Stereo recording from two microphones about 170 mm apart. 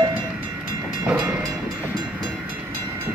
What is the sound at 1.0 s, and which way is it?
Train, 5° right (ahead or behind).